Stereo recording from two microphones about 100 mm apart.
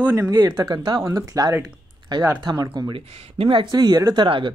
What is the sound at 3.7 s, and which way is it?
Speech, 45° right (ahead or behind).